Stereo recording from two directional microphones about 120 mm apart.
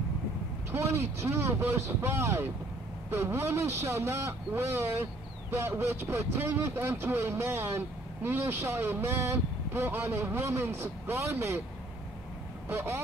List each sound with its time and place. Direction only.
0.7 s speech: 20° right (ahead or behind)
12.6 s speech: 20° right (ahead or behind)